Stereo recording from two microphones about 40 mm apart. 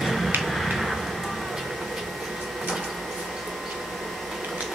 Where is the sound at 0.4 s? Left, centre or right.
Centre.